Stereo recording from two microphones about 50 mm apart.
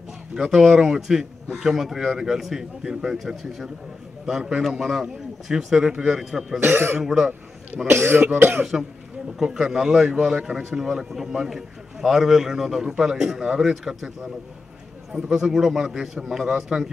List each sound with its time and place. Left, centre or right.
0.3 s a man's voice: centre
6.6 s speech: right
7.0 s a man's voice: centre
7.7 s a man's voice: right
9.4 s a man's voice: centre